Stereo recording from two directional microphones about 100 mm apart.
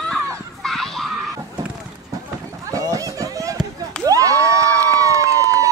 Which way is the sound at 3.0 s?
35° right (ahead or behind).